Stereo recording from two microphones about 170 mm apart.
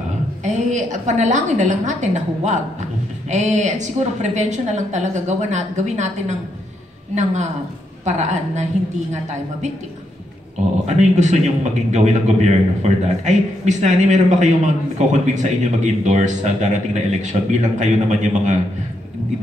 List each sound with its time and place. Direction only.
0.4 s a man's voice: 45° right (ahead or behind)
8.0 s a man's voice: 45° right (ahead or behind)
10.9 s a man's voice: 45° right (ahead or behind)